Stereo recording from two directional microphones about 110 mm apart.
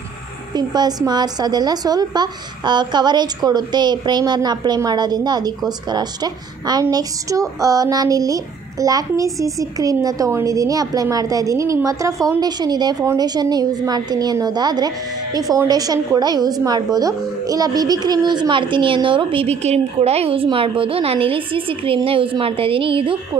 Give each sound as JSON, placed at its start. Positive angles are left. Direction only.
{"t": 0.6, "sound": "a woman's voice", "side_deg": -35}
{"t": 19.4, "sound": "a woman's voice", "side_deg": -80}